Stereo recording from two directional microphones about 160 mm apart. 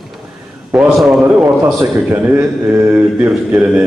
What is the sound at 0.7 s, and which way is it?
Speech, centre (ahead or behind).